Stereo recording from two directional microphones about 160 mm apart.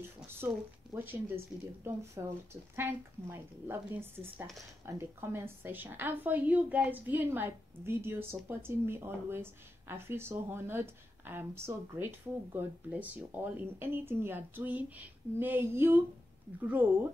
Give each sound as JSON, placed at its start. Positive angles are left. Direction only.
{"t": 0.4, "sound": "a woman's voice", "side_deg": -10}